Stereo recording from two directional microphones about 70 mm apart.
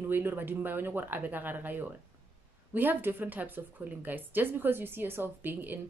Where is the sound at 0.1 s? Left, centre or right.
Right.